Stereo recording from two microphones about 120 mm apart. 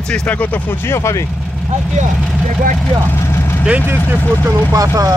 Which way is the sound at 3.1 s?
20° left (ahead or behind).